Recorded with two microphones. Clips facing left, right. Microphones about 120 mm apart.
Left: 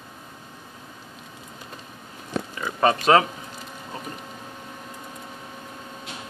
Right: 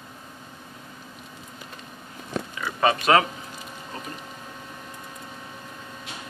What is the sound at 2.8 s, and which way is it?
Speech, 35° left (ahead or behind).